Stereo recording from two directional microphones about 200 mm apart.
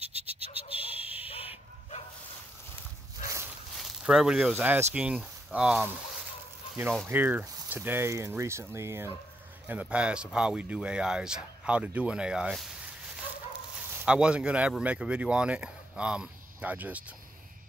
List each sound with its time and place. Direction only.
0.7 s a sound: 10° right (ahead or behind)
3.2 s dog: 15° right (ahead or behind)
3.7 s speech: centre (ahead or behind)
13.7 s speech: 10° right (ahead or behind)